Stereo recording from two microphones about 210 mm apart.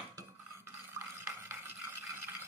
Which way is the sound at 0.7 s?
10° right (ahead or behind).